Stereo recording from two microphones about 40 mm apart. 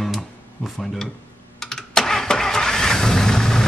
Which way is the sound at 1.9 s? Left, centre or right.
Centre.